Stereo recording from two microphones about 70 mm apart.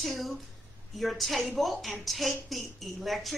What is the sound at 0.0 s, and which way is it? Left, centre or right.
A woman's voice, centre.